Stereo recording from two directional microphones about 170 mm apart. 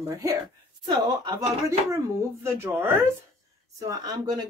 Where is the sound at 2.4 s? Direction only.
15° right (ahead or behind).